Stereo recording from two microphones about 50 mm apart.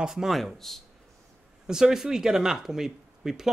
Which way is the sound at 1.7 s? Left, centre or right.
Centre.